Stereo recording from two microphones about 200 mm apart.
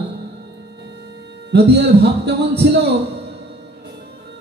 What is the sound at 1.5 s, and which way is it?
A man's voice, 55° right (ahead or behind).